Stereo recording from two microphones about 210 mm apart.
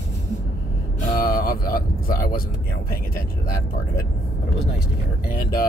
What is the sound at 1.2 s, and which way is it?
Speech, 45° left (ahead or behind).